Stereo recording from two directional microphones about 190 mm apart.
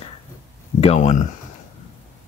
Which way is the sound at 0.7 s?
35° left (ahead or behind).